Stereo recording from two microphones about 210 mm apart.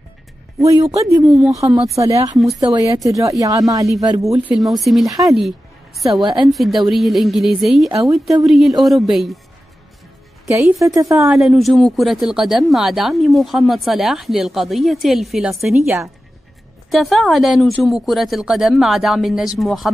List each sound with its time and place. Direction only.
0.6 s speech: 15° right (ahead or behind)
1.2 s speech: centre (ahead or behind)
1.6 s speech: 20° right (ahead or behind)
2.3 s speech: centre (ahead or behind)
2.6 s speech: 15° right (ahead or behind)
4.5 s speech: centre (ahead or behind)
11.0 s speech: 15° right (ahead or behind)
11.2 s speech: centre (ahead or behind)
16.9 s speech: centre (ahead or behind)